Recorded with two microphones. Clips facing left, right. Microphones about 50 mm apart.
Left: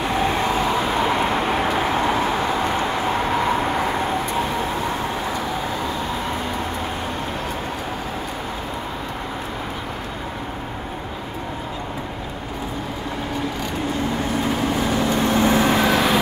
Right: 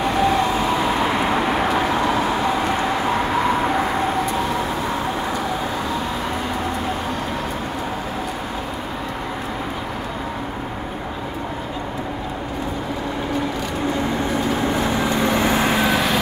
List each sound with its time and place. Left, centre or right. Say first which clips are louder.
15.0 s vehicle: even; centre
15.7 s vehicle: left 1 dB; centre